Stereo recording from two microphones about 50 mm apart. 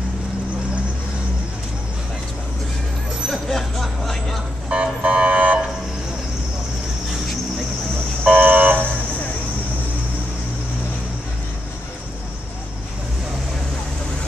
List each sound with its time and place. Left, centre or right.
3.3 s vehicle: centre
4.6 s car alarm: right
8.2 s buzzer: right